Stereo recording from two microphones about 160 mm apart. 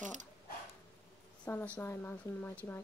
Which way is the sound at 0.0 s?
50° right (ahead or behind).